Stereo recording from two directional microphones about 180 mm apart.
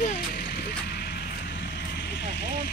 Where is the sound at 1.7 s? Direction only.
75° left (ahead or behind).